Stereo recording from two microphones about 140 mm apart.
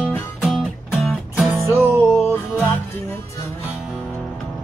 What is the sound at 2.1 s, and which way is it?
Music, 15° left (ahead or behind).